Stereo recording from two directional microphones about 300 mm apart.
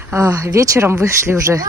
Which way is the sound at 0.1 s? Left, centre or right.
Centre.